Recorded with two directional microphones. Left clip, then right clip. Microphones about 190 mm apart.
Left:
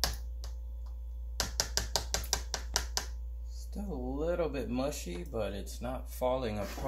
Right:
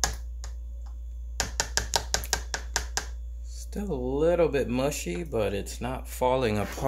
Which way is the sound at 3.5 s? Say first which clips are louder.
Right 9 dB; 65° right (ahead or behind).